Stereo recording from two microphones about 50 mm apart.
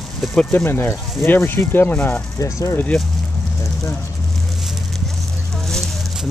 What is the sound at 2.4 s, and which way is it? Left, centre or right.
Speech, left.